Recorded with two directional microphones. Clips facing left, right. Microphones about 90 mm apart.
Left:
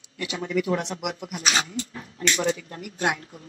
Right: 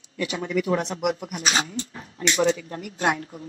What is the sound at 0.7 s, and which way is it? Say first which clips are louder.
Speech: right 3 dB; 45° right (ahead or behind).